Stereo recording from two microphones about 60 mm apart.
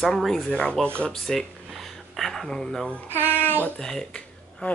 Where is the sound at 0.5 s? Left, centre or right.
Centre.